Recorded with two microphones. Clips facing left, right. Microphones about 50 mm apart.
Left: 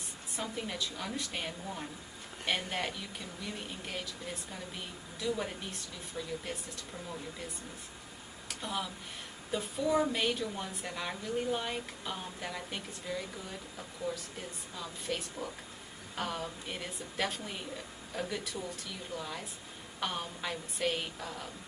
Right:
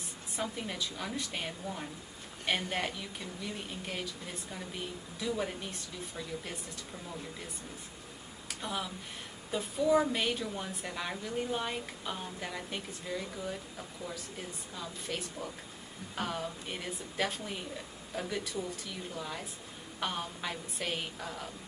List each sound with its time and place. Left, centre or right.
0.4 s speech: centre
8.5 s a sound: centre
9.5 s speech: centre